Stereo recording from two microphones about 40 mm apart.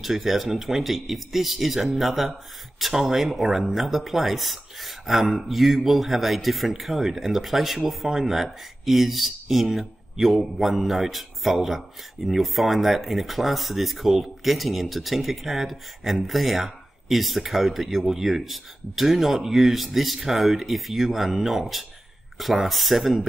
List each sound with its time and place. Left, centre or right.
0.0 s speech: centre